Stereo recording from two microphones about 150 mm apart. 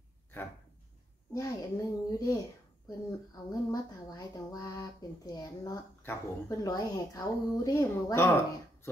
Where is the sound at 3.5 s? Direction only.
25° left (ahead or behind).